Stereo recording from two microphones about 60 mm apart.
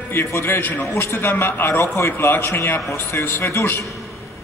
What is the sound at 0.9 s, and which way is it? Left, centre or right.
A man's voice, left.